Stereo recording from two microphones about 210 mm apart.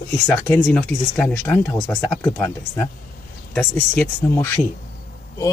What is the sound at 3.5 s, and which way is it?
Speech, 5° left (ahead or behind).